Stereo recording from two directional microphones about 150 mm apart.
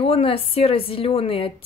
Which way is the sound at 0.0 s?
40° left (ahead or behind).